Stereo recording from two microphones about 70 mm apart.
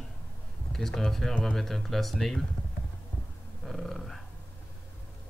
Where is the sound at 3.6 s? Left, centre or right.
Centre.